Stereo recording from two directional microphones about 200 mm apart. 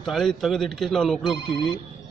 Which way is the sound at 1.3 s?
25° left (ahead or behind).